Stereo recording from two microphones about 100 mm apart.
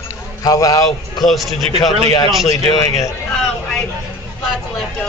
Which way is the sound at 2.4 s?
35° left (ahead or behind).